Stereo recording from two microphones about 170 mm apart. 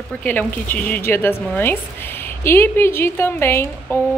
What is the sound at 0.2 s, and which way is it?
A woman's voice, 10° left (ahead or behind).